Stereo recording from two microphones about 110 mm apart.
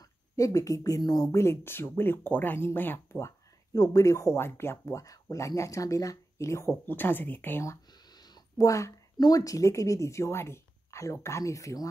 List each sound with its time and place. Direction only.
0.4 s speech: 30° left (ahead or behind)